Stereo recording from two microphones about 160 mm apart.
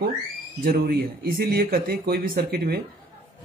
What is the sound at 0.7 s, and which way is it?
Speech, 70° right (ahead or behind).